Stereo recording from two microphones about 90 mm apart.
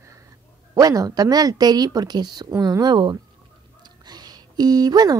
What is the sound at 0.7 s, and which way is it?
Speech, 45° right (ahead or behind).